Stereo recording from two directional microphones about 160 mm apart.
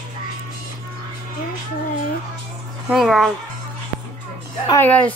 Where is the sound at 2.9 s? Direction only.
Centre (ahead or behind).